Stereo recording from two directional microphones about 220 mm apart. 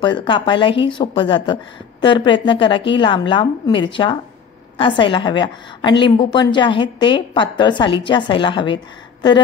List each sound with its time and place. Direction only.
0.0 s a woman's voice: 20° left (ahead or behind)